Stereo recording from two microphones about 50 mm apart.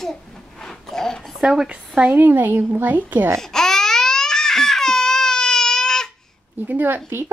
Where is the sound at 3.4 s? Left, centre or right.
Centre.